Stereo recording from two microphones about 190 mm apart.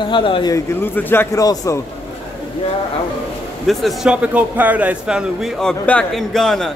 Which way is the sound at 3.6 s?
Centre (ahead or behind).